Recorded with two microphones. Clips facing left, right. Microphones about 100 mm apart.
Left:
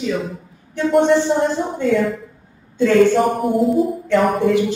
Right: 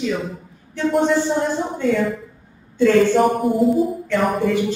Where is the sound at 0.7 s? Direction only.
Centre (ahead or behind).